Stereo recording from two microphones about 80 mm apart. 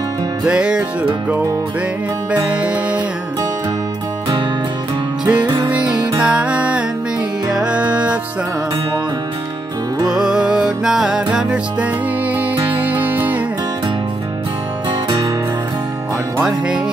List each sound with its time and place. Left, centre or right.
0.4 s music: centre
2.3 s music: centre
5.2 s music: centre
10.0 s music: centre
14.9 s music: right
16.4 s music: centre